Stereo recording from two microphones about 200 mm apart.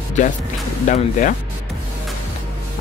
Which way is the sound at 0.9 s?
40° left (ahead or behind).